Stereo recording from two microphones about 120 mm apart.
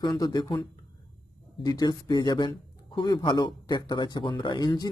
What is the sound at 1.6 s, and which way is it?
A man's voice, 35° left (ahead or behind).